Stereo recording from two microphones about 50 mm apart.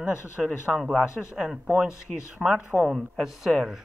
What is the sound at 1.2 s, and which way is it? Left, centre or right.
Speech, centre.